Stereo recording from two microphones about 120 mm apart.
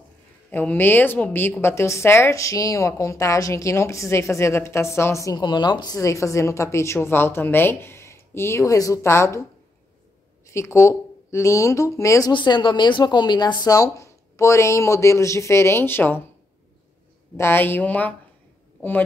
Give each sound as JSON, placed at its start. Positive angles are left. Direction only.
{"t": 0.5, "sound": "a woman's voice", "side_deg": 15}
{"t": 10.5, "sound": "a woman's voice", "side_deg": 25}
{"t": 12.3, "sound": "a woman's voice", "side_deg": 40}
{"t": 17.4, "sound": "a woman's voice", "side_deg": 20}